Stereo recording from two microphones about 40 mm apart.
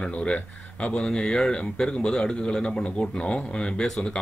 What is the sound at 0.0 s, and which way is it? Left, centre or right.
Speech, left.